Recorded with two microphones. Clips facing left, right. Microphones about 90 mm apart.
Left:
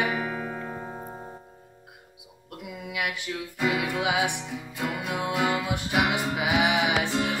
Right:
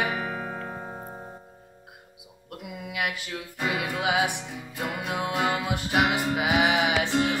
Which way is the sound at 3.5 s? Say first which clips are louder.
Left 2 dB; centre (ahead or behind).